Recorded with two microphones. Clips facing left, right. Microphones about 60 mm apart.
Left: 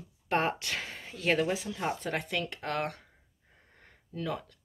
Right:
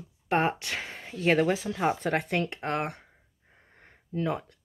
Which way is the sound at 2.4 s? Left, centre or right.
Right.